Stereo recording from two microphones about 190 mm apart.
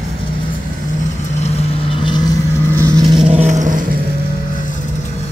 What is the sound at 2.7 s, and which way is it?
Vehicle, 20° right (ahead or behind).